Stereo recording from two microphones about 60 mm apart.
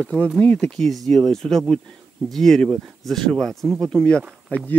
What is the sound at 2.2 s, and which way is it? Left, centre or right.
Insect, centre.